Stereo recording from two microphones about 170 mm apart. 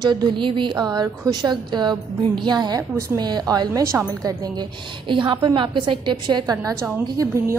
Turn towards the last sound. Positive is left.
turn(degrees=-15)  # may be behind; listen again after turning